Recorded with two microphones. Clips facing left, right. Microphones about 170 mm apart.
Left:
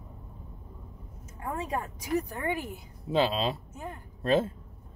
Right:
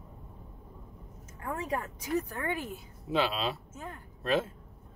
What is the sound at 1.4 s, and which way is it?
A woman's voice, 20° left (ahead or behind).